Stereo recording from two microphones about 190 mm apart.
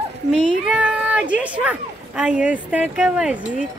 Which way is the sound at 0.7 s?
5° right (ahead or behind).